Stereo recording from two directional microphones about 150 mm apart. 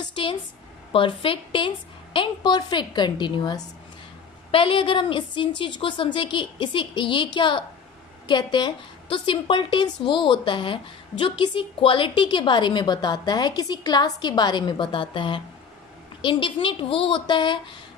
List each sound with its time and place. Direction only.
0.0 s a woman's voice: 35° left (ahead or behind)